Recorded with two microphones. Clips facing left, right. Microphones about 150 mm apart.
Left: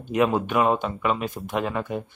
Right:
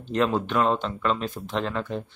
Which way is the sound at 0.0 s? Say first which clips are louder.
Left 2 dB; 10° left (ahead or behind).